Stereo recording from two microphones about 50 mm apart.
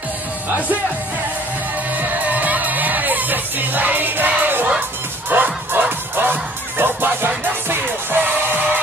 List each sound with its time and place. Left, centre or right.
2.0 s music: right